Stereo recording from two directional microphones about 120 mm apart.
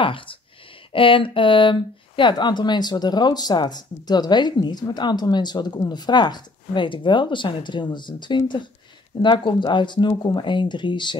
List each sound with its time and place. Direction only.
0.0 s speech: 45° left (ahead or behind)